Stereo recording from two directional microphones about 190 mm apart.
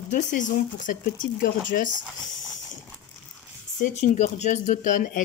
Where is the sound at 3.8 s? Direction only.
40° left (ahead or behind).